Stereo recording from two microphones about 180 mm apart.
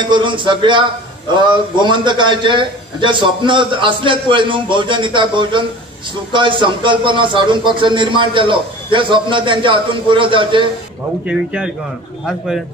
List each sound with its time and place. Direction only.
0.0 s a man's voice: 25° right (ahead or behind)
11.2 s speech: 5° right (ahead or behind)